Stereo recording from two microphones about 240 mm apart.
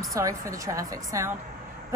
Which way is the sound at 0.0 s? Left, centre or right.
Centre.